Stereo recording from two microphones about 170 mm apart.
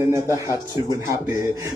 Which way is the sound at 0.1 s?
15° right (ahead or behind).